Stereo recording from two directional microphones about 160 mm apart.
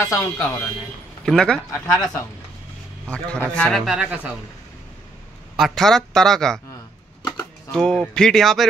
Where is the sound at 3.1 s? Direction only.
5° left (ahead or behind).